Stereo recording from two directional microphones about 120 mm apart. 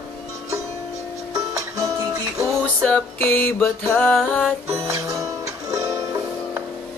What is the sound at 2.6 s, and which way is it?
Music, 10° left (ahead or behind).